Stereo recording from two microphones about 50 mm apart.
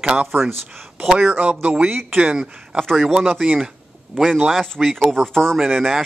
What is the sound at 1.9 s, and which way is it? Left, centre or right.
Speech, right.